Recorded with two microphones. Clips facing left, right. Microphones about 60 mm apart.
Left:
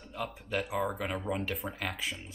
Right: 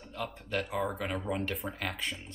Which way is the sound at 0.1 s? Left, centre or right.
Centre.